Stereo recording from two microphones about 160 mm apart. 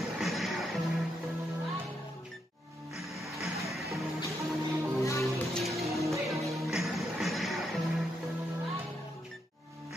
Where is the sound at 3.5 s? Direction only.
Centre (ahead or behind).